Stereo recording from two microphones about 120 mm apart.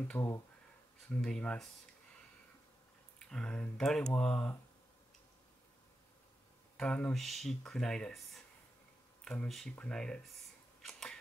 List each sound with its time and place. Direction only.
0.2 s speech: 15° left (ahead or behind)
3.2 s speech: 5° left (ahead or behind)
6.8 s speech: 10° left (ahead or behind)
10.8 s a sound: 5° left (ahead or behind)